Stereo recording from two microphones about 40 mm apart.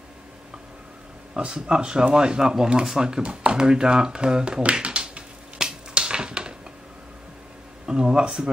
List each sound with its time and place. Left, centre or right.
1.4 s speech: right
5.6 s a sound: right
7.8 s speech: centre